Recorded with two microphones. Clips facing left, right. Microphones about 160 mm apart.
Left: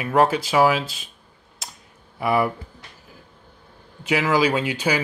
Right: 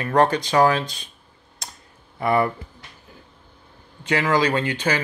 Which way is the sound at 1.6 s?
5° left (ahead or behind).